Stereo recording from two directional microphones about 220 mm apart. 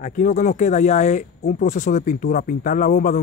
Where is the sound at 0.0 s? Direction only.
35° left (ahead or behind).